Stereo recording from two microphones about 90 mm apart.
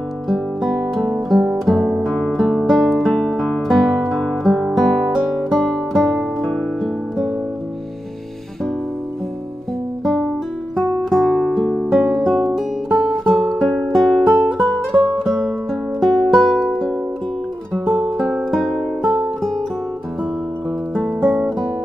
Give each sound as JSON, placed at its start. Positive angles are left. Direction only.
{"t": 0.3, "sound": "music", "side_deg": 0}
{"t": 4.6, "sound": "guitar", "side_deg": 0}
{"t": 5.5, "sound": "music", "side_deg": 0}
{"t": 11.1, "sound": "music", "side_deg": 0}
{"t": 21.2, "sound": "music", "side_deg": -25}